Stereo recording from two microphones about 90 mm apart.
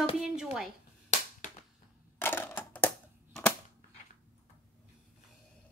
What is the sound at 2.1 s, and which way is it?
Typewriter, 25° left (ahead or behind).